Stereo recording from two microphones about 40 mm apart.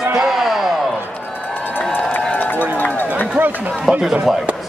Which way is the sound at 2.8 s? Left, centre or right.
Left.